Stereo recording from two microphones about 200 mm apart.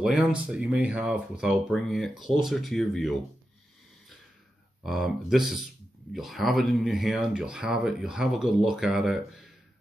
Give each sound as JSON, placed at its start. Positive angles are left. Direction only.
{"t": 0.0, "sound": "speech", "side_deg": -5}
{"t": 4.8, "sound": "speech", "side_deg": 0}